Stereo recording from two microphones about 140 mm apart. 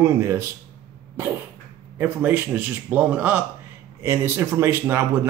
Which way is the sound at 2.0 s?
10° right (ahead or behind).